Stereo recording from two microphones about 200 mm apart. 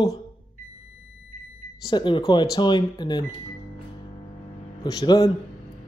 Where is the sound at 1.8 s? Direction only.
25° left (ahead or behind).